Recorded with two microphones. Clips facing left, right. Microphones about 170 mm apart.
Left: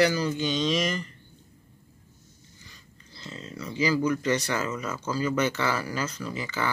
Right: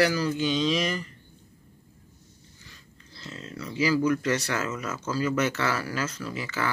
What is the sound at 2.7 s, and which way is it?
Speech, centre (ahead or behind).